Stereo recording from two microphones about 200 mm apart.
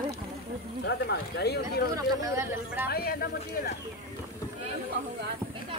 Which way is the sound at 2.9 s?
50° left (ahead or behind).